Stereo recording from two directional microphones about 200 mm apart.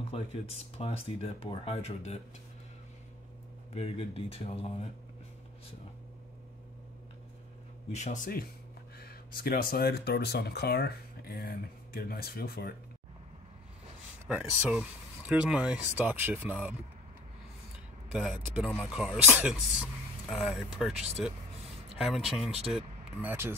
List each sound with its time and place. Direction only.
0.1 s speech: 30° left (ahead or behind)
3.7 s speech: 30° left (ahead or behind)
7.9 s speech: 35° left (ahead or behind)
14.2 s speech: 10° right (ahead or behind)
18.6 s speech: centre (ahead or behind)
20.9 s speech: 30° right (ahead or behind)
21.9 s speech: centre (ahead or behind)